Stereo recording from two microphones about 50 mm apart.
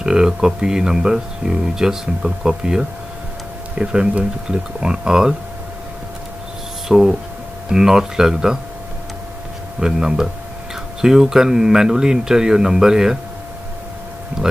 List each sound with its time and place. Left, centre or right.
0.0 s speech: centre
6.9 s speech: centre
9.8 s speech: centre
14.4 s speech: centre